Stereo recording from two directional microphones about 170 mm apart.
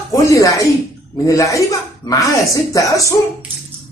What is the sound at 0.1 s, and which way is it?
Speech, 20° left (ahead or behind).